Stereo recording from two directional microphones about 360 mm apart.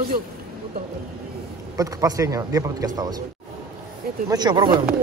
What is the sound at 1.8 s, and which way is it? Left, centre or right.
A man's voice, centre.